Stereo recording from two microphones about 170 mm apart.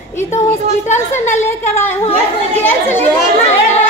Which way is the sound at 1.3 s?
15° left (ahead or behind).